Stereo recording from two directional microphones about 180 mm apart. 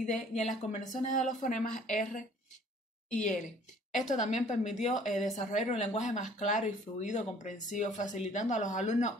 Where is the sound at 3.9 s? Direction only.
40° left (ahead or behind).